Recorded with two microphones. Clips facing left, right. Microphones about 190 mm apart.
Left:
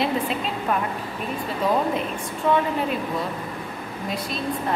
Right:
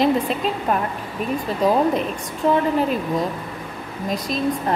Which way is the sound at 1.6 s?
40° right (ahead or behind).